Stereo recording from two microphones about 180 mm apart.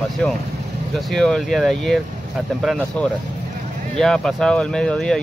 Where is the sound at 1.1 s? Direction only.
5° left (ahead or behind).